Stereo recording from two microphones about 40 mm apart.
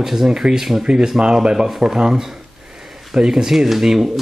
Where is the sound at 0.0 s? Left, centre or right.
Centre.